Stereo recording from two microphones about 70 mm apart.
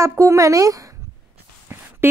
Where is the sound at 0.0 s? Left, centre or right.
Right.